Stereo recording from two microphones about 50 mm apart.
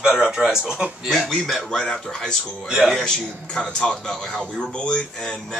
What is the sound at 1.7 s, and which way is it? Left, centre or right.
Speech, centre.